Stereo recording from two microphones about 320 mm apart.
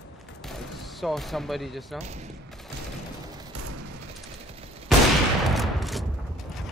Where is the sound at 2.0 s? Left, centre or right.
Right.